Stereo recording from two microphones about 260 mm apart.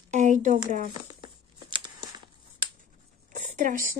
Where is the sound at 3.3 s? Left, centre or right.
Right.